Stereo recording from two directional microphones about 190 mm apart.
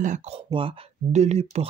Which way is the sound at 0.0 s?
40° right (ahead or behind).